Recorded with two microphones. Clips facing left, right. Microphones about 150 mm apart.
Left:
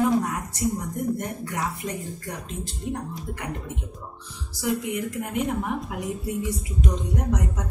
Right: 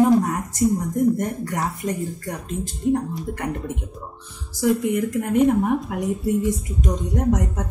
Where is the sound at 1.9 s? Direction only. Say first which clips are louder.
Right 6 dB; 45° right (ahead or behind).